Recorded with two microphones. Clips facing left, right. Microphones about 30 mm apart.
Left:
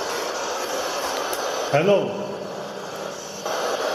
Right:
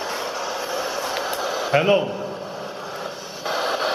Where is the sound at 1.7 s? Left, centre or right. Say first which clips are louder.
Even; right.